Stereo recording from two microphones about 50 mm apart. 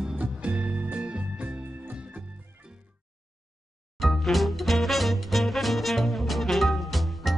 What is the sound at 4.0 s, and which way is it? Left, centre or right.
Swing music, centre.